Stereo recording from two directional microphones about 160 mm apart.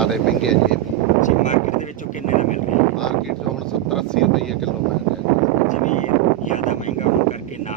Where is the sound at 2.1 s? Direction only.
50° left (ahead or behind).